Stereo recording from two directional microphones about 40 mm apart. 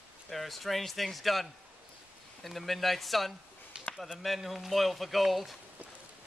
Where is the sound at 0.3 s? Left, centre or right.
Centre.